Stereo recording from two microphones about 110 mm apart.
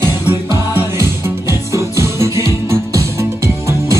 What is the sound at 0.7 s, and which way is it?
Music, 25° right (ahead or behind).